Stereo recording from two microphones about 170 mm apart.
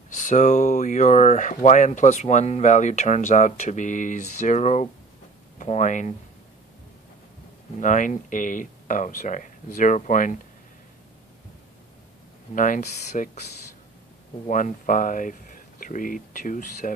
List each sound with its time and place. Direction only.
0.1 s speech: 45° left (ahead or behind)
7.8 s speech: 50° left (ahead or behind)
12.5 s speech: 50° left (ahead or behind)
14.5 s speech: 50° left (ahead or behind)